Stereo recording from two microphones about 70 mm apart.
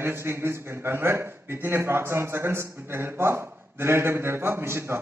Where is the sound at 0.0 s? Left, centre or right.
Right.